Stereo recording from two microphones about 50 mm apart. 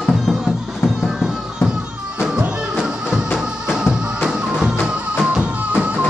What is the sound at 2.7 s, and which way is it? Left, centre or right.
Music, centre.